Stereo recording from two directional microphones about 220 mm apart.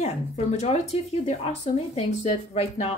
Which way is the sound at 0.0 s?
30° left (ahead or behind).